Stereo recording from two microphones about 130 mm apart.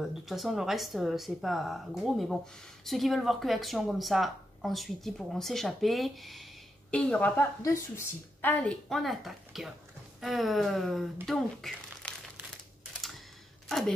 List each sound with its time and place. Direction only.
0.0 s a woman's voice: centre (ahead or behind)
7.6 s speech: 25° left (ahead or behind)
8.8 s speech: centre (ahead or behind)
13.7 s speech: centre (ahead or behind)